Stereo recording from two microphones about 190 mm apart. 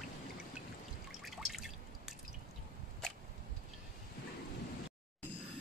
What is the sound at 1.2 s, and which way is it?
Drip, centre (ahead or behind).